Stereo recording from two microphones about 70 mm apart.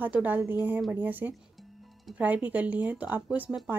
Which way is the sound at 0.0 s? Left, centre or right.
Right.